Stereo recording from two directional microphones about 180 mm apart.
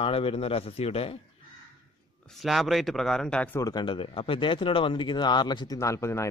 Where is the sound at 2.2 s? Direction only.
Centre (ahead or behind).